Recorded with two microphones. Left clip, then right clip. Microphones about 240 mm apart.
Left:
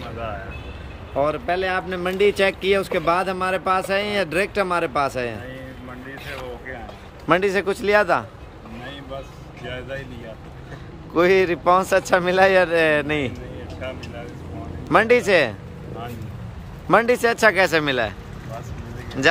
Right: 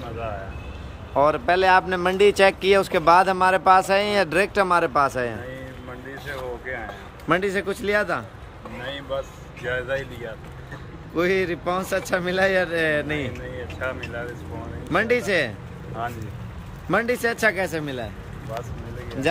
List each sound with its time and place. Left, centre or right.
1.1 s speech: centre
7.2 s speech: centre
9.7 s speech: centre
11.1 s speech: centre
13.7 s speech: centre
14.9 s speech: centre
16.9 s speech: centre